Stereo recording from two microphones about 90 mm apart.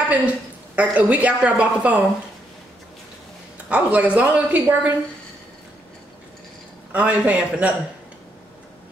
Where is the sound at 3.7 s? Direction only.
15° right (ahead or behind).